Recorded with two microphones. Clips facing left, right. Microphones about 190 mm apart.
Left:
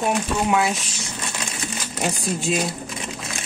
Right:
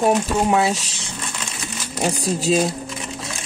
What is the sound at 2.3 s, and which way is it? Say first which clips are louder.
Speech: right 7 dB; 35° right (ahead or behind).